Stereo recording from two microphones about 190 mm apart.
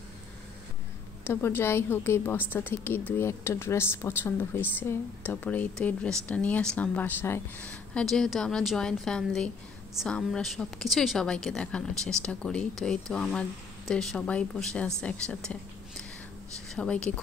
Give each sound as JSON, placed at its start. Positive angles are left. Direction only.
{"t": 1.2, "sound": "a woman's voice", "side_deg": 10}